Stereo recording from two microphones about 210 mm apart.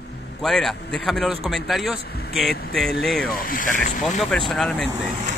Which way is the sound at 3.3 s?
40° left (ahead or behind).